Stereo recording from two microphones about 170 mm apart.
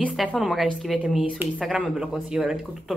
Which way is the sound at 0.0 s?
Centre (ahead or behind).